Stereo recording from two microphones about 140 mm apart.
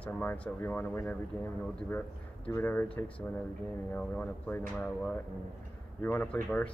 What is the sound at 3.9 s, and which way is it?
Speech, 10° left (ahead or behind).